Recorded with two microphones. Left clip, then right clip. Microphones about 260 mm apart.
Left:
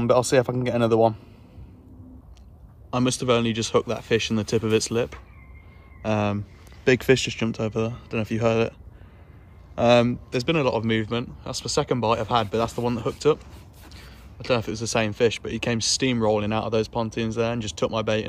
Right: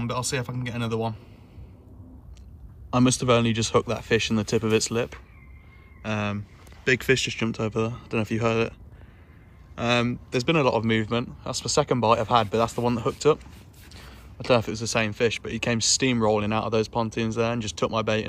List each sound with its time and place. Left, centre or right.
0.2 s speech: left
2.9 s speech: centre
9.8 s speech: centre